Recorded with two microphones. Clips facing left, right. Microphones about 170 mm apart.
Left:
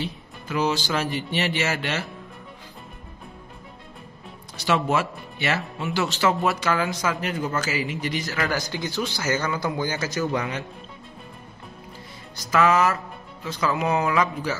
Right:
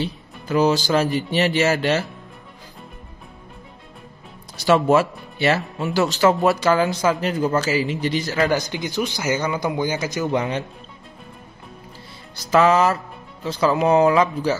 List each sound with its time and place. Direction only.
0.5 s speech: 40° right (ahead or behind)
4.6 s a man's voice: 40° right (ahead or behind); by 10.6 s 20° right (ahead or behind)
12.4 s speech: 30° right (ahead or behind)